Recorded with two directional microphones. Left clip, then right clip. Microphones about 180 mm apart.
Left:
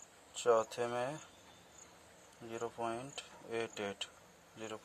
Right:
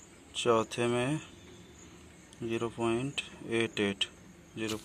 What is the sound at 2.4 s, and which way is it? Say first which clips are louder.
Speech: right 7 dB; centre (ahead or behind).